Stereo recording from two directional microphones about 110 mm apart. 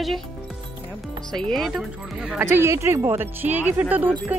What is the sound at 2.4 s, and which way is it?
Speech, 25° right (ahead or behind).